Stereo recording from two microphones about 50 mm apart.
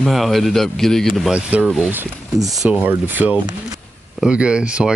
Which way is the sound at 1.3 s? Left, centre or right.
Right.